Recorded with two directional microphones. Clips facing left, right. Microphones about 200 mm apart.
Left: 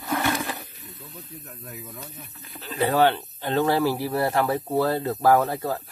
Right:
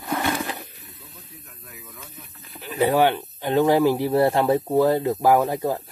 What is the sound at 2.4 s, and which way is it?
Speech, 10° right (ahead or behind).